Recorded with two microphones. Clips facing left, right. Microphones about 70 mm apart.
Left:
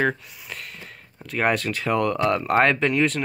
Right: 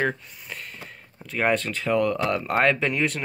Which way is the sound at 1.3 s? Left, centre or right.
Centre.